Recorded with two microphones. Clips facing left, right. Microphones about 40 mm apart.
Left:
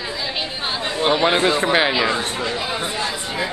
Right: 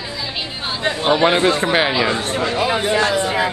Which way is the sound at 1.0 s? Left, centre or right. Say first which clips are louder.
Right 2 dB; centre.